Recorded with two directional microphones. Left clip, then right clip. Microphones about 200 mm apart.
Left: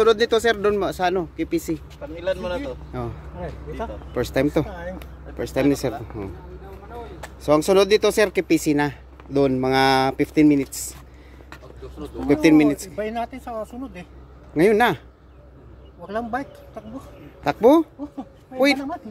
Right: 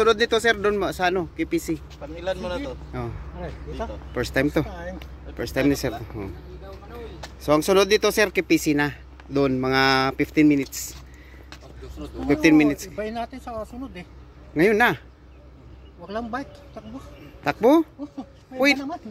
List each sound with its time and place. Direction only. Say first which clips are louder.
0.0 s speech: left 2 dB; 10° left (ahead or behind)
2.1 s speech: left 3 dB; 40° right (ahead or behind)
2.9 s speech: left 2 dB; 10° left (ahead or behind)
12.3 s speech: left 2 dB; 10° left (ahead or behind)
16.1 s speech: left 3 dB; 5° left (ahead or behind)